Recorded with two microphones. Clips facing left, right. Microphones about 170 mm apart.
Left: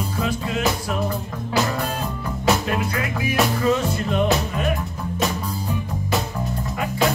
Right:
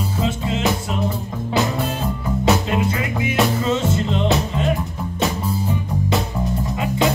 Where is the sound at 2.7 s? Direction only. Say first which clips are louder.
Right 3 dB; 20° right (ahead or behind).